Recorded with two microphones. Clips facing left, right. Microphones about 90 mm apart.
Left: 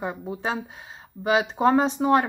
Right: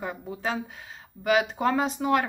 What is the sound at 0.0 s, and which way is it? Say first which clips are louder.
Speech: left 3 dB; 25° left (ahead or behind).